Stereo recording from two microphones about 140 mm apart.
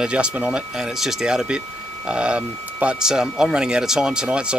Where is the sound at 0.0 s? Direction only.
5° right (ahead or behind).